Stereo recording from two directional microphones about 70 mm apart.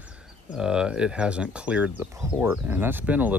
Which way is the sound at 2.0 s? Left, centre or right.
Right.